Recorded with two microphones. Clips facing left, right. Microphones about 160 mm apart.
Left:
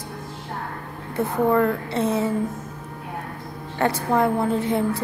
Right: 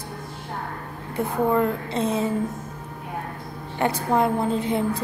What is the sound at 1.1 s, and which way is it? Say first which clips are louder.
A woman's voice: left 2 dB; 15° right (ahead or behind).